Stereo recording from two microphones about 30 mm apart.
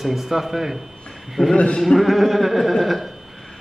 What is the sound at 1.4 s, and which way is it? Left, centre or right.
Speech, left.